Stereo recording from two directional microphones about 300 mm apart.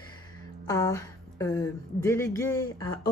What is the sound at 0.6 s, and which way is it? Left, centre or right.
Speech, centre.